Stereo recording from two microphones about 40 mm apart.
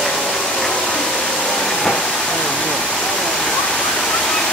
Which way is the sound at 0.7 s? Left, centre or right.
Left.